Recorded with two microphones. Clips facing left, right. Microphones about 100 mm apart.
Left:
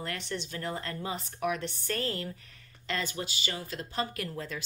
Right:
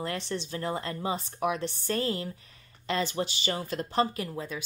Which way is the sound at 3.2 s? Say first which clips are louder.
Right 5 dB; 35° right (ahead or behind).